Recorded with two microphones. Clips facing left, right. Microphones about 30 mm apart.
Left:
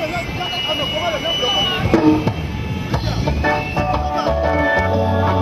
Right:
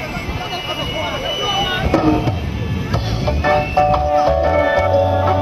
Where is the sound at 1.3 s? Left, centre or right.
Left.